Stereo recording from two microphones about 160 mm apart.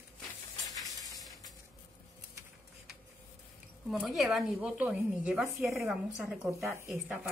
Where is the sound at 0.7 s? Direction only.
20° left (ahead or behind).